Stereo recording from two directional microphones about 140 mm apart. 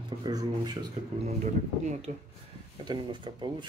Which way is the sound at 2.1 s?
65° right (ahead or behind).